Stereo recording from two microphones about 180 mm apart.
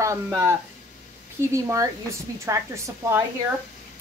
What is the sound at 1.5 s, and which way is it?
Speech, 15° right (ahead or behind).